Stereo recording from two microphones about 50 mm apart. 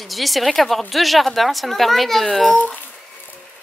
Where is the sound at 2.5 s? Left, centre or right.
Left.